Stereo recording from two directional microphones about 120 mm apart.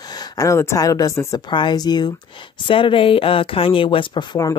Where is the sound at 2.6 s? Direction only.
45° left (ahead or behind).